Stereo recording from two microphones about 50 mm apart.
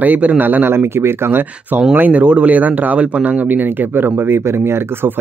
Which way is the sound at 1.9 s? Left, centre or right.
Right.